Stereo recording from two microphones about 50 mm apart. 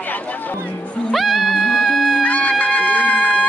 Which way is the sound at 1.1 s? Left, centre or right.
Centre.